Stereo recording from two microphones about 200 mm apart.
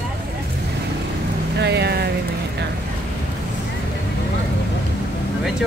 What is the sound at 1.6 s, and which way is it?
Speech, 55° right (ahead or behind).